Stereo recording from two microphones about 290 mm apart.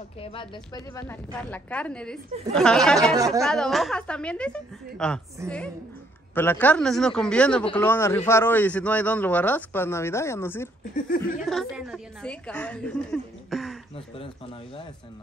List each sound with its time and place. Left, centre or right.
0.2 s a woman's voice: centre
3.2 s speech: centre
3.4 s a woman's voice: centre
6.3 s a woman's voice: centre
11.0 s speech: left
11.4 s a woman's voice: centre
13.9 s speech: centre